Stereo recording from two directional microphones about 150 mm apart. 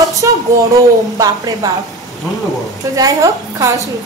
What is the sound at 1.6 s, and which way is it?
Speech, 20° right (ahead or behind).